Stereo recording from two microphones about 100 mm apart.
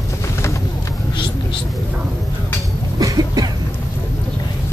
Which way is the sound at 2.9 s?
40° right (ahead or behind).